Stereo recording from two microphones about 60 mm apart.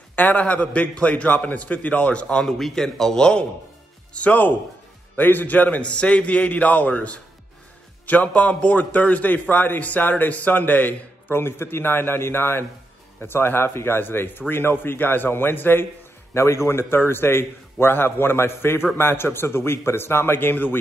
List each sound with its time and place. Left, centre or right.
0.1 s a man's voice: left
4.1 s a man's voice: left
16.3 s a man's voice: left